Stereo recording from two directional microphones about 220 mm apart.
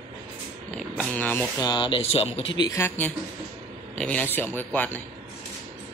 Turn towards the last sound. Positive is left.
turn(degrees=10)  # may be behind; listen again after turning